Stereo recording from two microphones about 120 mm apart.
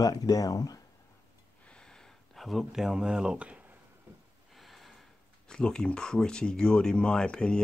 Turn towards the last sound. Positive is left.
turn(degrees=10)  # may be behind; listen again after turning